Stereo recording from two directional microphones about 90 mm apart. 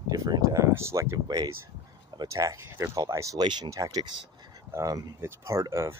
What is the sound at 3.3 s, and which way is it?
Speech, 55° right (ahead or behind).